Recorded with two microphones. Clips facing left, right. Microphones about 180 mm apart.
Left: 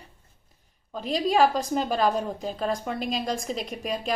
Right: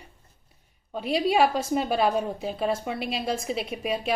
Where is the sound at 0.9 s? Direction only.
10° right (ahead or behind).